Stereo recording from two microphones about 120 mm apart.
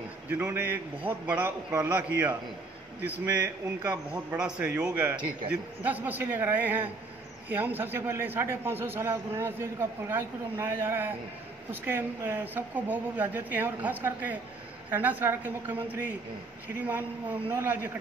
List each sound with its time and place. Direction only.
0.3 s speech: 15° right (ahead or behind)
4.1 s a man's voice: 10° right (ahead or behind)